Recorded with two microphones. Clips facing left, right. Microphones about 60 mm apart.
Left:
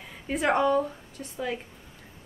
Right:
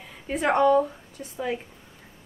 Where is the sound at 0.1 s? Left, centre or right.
Centre.